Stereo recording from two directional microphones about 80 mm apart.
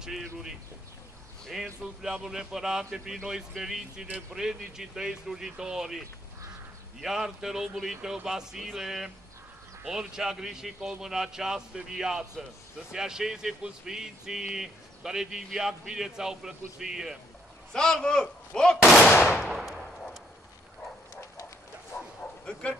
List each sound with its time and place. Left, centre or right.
0.2 s speech: centre
7.0 s speech: centre
17.7 s speech: centre
19.4 s gunshot: centre
21.9 s bow-wow: centre